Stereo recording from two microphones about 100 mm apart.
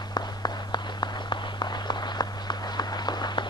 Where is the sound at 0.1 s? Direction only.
45° left (ahead or behind).